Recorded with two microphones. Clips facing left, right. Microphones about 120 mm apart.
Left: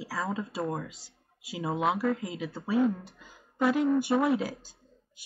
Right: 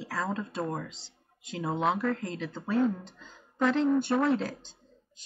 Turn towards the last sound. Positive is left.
turn(degrees=5)  # may be behind; listen again after turning